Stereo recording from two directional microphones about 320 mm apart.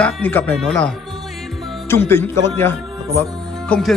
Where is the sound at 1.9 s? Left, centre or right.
Centre.